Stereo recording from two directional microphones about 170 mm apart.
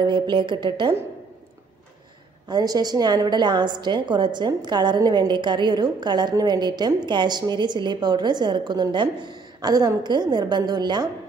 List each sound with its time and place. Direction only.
0.0 s a woman's voice: 25° right (ahead or behind)
2.4 s a woman's voice: 25° right (ahead or behind)